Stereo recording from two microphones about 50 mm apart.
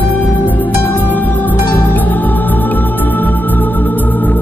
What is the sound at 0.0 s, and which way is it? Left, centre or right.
Music, left.